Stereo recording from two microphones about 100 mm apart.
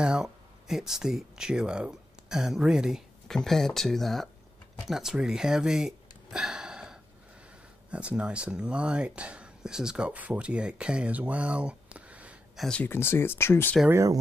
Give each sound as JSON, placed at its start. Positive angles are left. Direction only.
{"t": 0.0, "sound": "speech", "side_deg": -5}
{"t": 12.5, "sound": "speech", "side_deg": 5}
{"t": 12.8, "sound": "speech", "side_deg": 20}
{"t": 13.8, "sound": "speech", "side_deg": -30}